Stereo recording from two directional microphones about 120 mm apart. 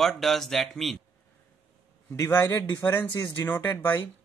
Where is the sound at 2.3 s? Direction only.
20° left (ahead or behind).